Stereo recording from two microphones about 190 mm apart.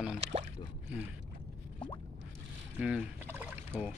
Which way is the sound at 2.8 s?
5° right (ahead or behind).